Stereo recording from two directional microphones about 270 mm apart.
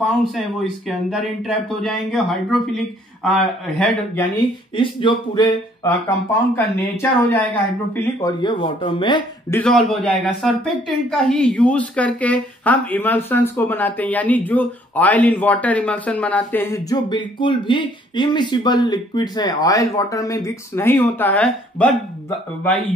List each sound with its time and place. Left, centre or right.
0.0 s speech: centre
4.7 s a woman's voice: centre
9.6 s a woman's voice: centre